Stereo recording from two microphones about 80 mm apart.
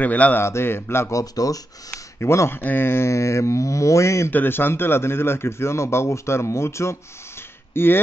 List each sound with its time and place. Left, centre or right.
0.0 s a man's voice: centre
0.4 s speech: left
1.1 s speech: left
1.9 s speech: left
4.3 s speech: left